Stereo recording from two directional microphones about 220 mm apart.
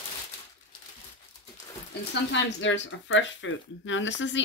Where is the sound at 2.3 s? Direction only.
55° left (ahead or behind).